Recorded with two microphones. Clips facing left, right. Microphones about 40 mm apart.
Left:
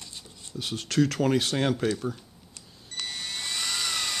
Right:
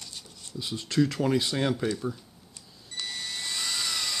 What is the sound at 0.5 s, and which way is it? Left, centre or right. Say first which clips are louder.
Speech: left 1 dB; left.